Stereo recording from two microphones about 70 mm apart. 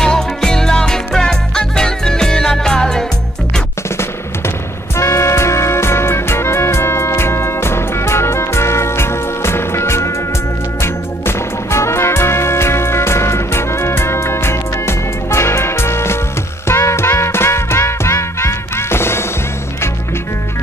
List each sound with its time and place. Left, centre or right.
0.0 s music: centre
4.9 s music: left